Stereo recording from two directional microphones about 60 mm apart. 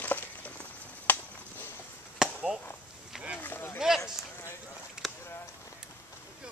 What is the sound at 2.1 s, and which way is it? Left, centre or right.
Chop, centre.